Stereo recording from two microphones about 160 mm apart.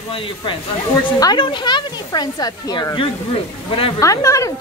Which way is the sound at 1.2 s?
30° left (ahead or behind).